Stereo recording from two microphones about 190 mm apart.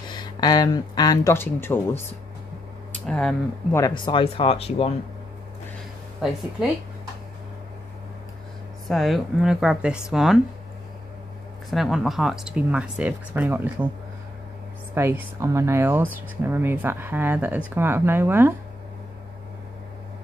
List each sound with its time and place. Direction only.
0.1 s speech: 20° left (ahead or behind)
3.1 s speech: 5° left (ahead or behind)
3.7 s speech: 20° left (ahead or behind)
8.8 s speech: centre (ahead or behind)
11.7 s speech: centre (ahead or behind)
15.0 s speech: 10° right (ahead or behind)